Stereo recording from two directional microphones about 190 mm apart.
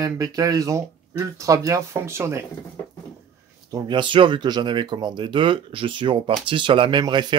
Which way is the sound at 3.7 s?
20° right (ahead or behind).